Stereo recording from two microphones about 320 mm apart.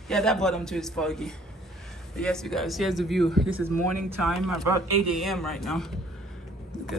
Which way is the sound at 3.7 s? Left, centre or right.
Right.